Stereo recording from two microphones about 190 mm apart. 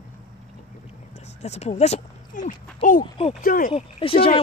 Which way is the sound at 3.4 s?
50° left (ahead or behind).